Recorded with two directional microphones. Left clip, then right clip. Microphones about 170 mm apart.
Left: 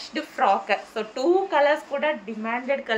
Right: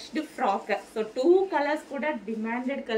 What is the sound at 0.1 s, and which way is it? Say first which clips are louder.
A woman's voice: left 6 dB; 15° right (ahead or behind).